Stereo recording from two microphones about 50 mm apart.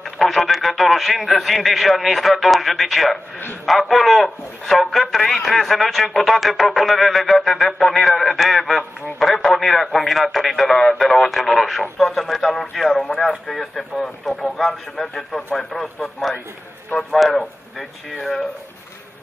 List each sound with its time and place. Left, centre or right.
0.0 s a man's voice: centre
15.3 s speech: centre
16.2 s a man's voice: centre